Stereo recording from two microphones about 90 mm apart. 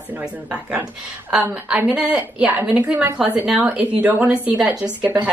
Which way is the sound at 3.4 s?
10° right (ahead or behind).